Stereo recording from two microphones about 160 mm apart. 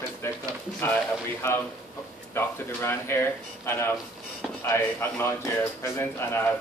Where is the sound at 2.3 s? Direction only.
15° left (ahead or behind).